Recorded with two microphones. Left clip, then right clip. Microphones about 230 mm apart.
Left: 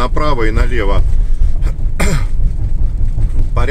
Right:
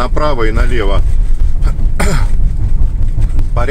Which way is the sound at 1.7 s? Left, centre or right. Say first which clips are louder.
Right 2 dB; centre.